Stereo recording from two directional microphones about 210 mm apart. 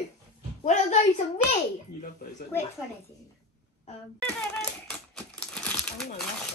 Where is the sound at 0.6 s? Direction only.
35° left (ahead or behind).